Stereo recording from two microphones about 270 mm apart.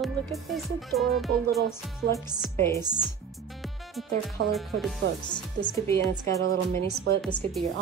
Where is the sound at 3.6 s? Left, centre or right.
Centre.